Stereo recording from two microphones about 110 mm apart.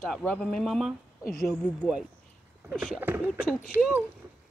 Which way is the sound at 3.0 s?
15° right (ahead or behind).